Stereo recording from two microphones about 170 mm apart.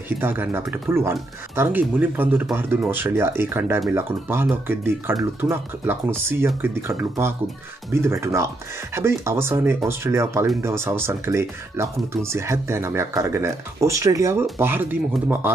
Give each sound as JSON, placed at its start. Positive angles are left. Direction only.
{"t": 0.2, "sound": "speech", "side_deg": -15}